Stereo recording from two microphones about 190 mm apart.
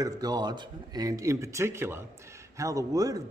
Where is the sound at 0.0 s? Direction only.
20° right (ahead or behind).